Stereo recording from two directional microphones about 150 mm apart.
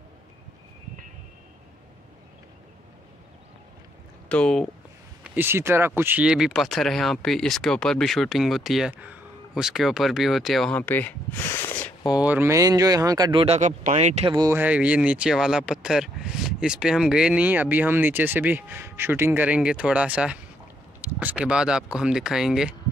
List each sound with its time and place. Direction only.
4.3 s speech: 5° left (ahead or behind)
5.2 s speech: 15° right (ahead or behind)
10.8 s speech: 10° left (ahead or behind)
12.2 s speech: 10° right (ahead or behind); by 13.6 s 35° right (ahead or behind)
13.6 s speech: 55° right (ahead or behind)
14.5 s speech: 10° right (ahead or behind)